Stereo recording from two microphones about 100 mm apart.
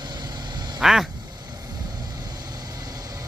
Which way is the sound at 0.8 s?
5° right (ahead or behind).